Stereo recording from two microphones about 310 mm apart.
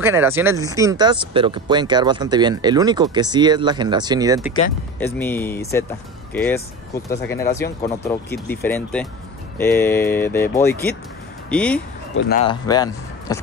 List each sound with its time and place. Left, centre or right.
0.0 s speech: centre
5.0 s speech: centre
12.2 s speech: left
12.4 s speech: centre